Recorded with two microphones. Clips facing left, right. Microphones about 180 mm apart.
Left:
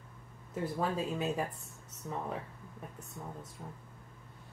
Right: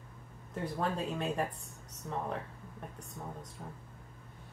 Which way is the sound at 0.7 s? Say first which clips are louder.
Even; 5° left (ahead or behind).